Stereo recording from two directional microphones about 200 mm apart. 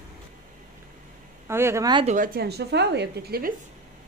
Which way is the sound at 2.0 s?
40° right (ahead or behind).